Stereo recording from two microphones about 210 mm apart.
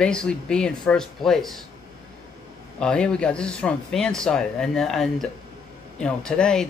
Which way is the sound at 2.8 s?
5° left (ahead or behind).